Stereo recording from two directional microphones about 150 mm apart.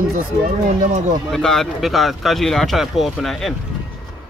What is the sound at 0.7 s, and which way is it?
Speech, 55° right (ahead or behind).